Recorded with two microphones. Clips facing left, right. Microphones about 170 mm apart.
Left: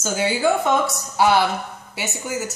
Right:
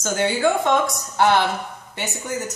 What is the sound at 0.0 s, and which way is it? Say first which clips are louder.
Speech: even; 5° left (ahead or behind).